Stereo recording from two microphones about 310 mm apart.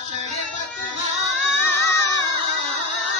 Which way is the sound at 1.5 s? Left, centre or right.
Centre.